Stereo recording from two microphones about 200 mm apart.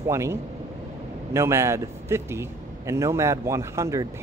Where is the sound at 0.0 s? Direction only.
15° right (ahead or behind).